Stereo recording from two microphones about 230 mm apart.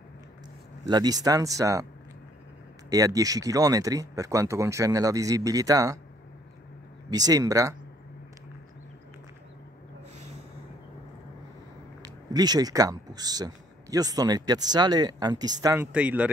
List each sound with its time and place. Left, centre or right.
0.8 s speech: centre
2.9 s speech: centre
7.1 s speech: centre
12.0 s speech: centre